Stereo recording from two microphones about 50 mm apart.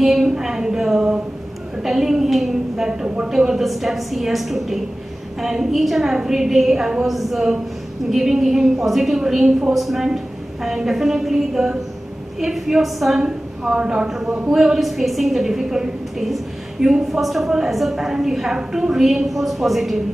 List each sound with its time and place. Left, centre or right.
0.0 s a woman's voice: centre
13.2 s a woman's voice: centre